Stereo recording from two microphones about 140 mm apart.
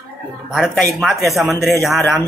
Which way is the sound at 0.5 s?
Centre (ahead or behind).